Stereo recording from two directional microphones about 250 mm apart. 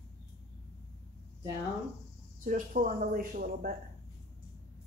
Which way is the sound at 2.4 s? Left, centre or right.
Right.